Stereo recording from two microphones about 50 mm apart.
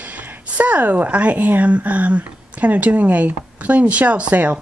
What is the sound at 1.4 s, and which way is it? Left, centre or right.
Speech, right.